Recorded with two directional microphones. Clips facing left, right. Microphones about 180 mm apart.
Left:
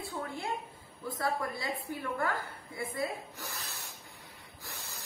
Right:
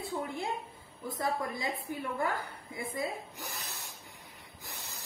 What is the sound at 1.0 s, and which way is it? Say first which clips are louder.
A woman's voice: even; 20° right (ahead or behind).